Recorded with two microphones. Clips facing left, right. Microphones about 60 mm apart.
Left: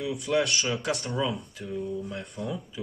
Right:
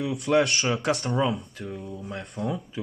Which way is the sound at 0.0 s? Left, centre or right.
Right.